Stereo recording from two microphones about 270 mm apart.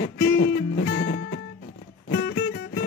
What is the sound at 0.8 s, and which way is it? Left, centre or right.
Music, left.